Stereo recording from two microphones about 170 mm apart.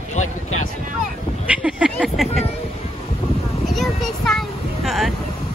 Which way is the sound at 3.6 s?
Centre (ahead or behind).